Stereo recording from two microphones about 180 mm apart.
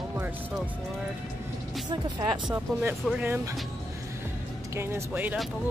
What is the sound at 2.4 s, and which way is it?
Speech, 10° right (ahead or behind).